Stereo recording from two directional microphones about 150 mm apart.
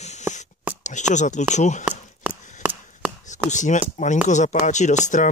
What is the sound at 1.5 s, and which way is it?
Speech, 50° left (ahead or behind).